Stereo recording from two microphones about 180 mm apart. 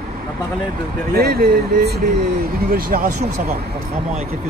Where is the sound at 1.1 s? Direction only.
60° right (ahead or behind).